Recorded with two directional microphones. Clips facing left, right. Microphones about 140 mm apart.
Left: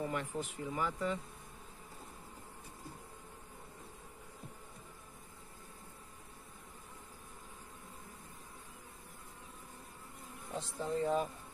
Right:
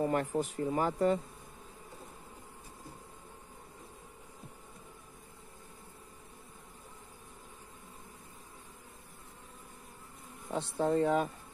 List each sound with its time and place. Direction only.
0.0 s speech: 45° right (ahead or behind)
10.5 s speech: 70° right (ahead or behind)